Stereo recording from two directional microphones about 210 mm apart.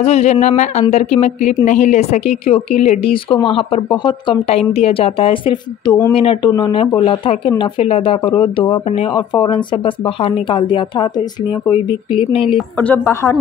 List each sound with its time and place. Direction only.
0.0 s speech: 30° left (ahead or behind)
12.1 s speech: 25° left (ahead or behind)
12.7 s a woman's voice: 10° left (ahead or behind)